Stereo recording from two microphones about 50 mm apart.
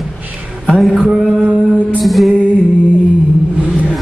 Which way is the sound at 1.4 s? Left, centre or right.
Right.